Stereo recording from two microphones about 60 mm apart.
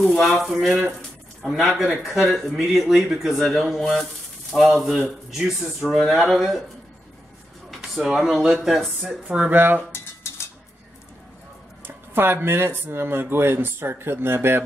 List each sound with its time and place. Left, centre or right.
0.0 s speech: centre
7.7 s speech: centre
9.5 s speech: right
9.9 s a sound: left
11.8 s speech: right